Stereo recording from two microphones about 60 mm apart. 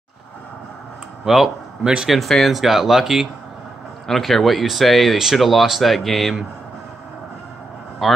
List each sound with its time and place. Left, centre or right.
1.2 s speech: centre
1.8 s speech: centre
2.0 s speech: centre
8.0 s speech: centre